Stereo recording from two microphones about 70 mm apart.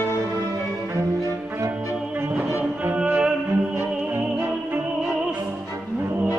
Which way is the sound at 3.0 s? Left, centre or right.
Centre.